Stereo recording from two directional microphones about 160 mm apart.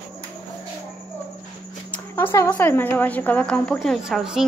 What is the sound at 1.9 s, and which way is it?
A woman's voice, 15° left (ahead or behind).